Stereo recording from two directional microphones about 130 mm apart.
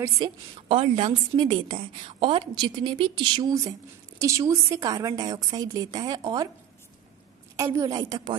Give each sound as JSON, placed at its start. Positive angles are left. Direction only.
{"t": 0.2, "sound": "a woman's voice", "side_deg": -35}
{"t": 0.7, "sound": "a woman's voice", "side_deg": -50}
{"t": 4.2, "sound": "a woman's voice", "side_deg": -25}
{"t": 7.5, "sound": "a woman's voice", "side_deg": -25}